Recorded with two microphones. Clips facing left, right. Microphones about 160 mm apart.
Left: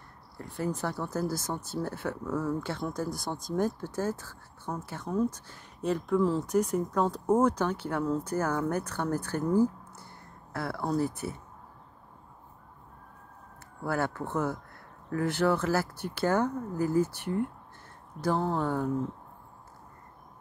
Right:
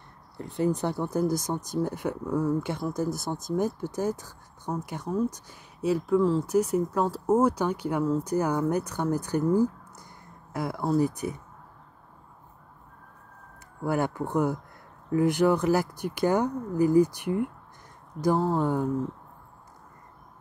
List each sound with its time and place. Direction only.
0.4 s speech: 20° right (ahead or behind)
13.8 s speech: 15° right (ahead or behind)